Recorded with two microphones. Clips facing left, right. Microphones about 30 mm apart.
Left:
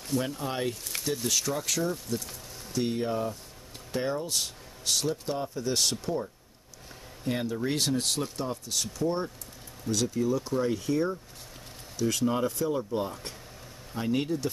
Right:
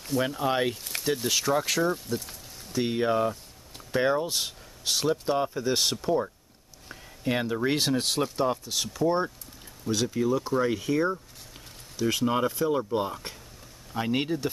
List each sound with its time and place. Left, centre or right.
0.2 s speech: centre
0.6 s speech: right
7.2 s speech: right